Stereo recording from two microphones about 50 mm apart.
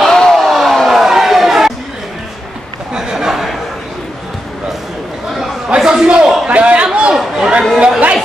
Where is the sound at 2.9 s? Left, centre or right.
Centre.